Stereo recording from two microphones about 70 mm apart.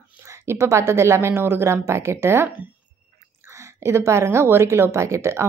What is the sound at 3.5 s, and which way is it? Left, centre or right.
A woman's voice, right.